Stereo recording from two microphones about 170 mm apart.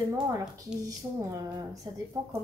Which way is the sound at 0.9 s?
20° right (ahead or behind).